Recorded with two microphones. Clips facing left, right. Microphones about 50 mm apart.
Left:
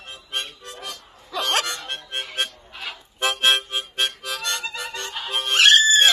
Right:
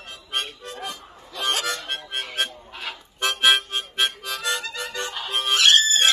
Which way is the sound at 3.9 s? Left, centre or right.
Centre.